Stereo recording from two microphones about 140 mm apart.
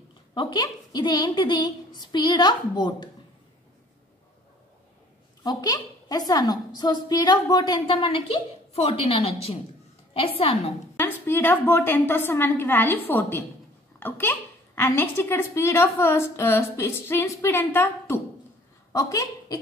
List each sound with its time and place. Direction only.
0.3 s a woman's voice: 30° left (ahead or behind)
5.4 s a woman's voice: 30° left (ahead or behind)
11.0 s a child's voice: 15° left (ahead or behind)